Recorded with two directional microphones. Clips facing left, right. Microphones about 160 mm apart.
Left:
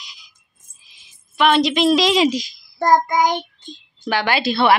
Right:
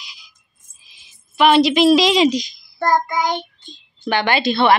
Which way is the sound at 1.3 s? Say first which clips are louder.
Right 3 dB; 5° right (ahead or behind).